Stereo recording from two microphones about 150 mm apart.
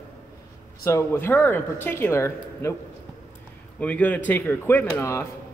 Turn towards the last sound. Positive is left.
turn(degrees=15)  # may be behind; listen again after turning